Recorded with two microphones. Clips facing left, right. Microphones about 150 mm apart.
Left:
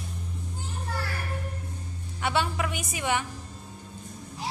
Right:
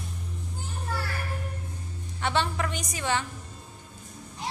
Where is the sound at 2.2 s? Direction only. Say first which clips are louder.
Even; 10° left (ahead or behind).